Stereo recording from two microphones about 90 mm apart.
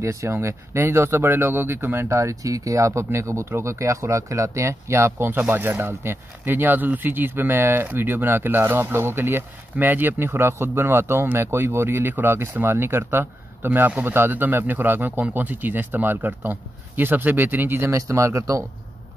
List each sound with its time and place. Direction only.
0.0 s speech: 35° right (ahead or behind)